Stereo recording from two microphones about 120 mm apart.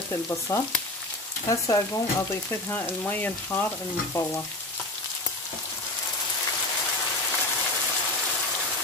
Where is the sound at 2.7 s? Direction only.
15° left (ahead or behind).